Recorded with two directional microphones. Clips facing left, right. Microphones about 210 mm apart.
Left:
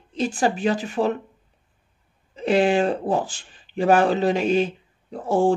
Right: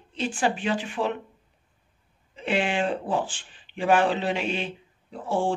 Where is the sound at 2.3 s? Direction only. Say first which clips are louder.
Left 7 dB; 40° left (ahead or behind).